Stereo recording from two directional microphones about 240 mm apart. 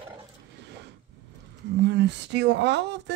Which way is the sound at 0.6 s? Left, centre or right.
Right.